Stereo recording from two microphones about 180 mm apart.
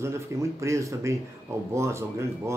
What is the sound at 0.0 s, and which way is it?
Speech, 15° right (ahead or behind).